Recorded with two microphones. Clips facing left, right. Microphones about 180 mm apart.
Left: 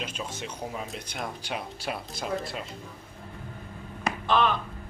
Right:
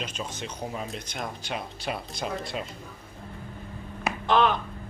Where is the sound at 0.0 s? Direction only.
5° left (ahead or behind).